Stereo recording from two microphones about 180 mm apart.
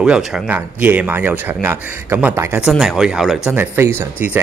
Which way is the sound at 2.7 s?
Centre (ahead or behind).